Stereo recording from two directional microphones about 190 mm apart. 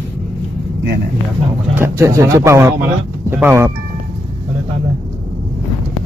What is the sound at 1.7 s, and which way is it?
Speech, 15° right (ahead or behind).